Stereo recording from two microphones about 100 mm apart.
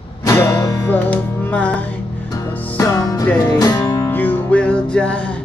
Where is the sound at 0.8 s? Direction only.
15° left (ahead or behind).